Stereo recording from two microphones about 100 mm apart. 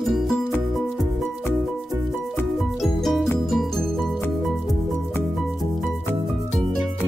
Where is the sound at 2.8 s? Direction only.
Centre (ahead or behind).